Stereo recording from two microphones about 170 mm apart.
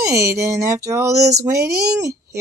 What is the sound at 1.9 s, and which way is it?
Speech, 20° right (ahead or behind).